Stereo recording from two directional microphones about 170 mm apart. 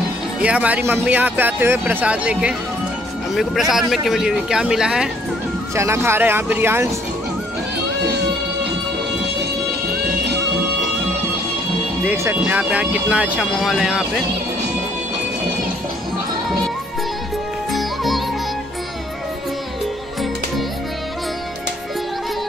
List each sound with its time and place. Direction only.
0.4 s speech: 10° right (ahead or behind)
5.8 s speech: 15° right (ahead or behind)
9.4 s music: 70° right (ahead or behind)
12.1 s speech: 10° right (ahead or behind)
17.7 s music: centre (ahead or behind)